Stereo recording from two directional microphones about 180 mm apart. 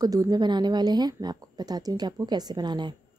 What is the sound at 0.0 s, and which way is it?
Speech, 20° right (ahead or behind).